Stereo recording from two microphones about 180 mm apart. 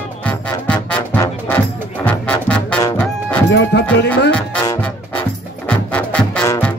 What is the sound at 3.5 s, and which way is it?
Music, 70° left (ahead or behind).